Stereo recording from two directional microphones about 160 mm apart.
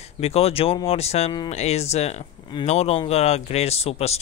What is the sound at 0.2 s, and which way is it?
Speech, 40° left (ahead or behind).